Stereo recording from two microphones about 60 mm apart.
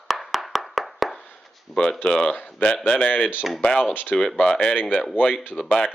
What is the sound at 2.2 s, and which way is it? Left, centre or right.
Speech, left.